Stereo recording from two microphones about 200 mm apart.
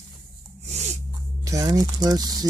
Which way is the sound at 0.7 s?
35° right (ahead or behind).